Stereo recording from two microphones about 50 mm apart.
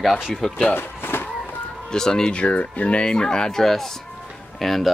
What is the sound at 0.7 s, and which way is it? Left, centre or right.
Power windows, left.